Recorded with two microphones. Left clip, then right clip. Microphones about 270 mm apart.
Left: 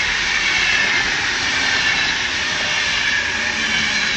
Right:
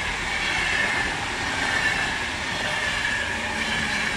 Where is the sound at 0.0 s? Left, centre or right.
Right.